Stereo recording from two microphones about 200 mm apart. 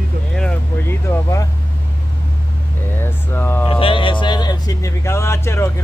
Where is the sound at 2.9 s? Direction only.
10° left (ahead or behind).